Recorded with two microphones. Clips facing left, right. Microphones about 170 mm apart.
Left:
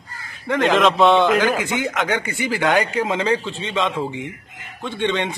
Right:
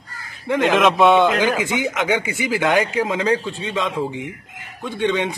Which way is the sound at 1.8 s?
15° right (ahead or behind).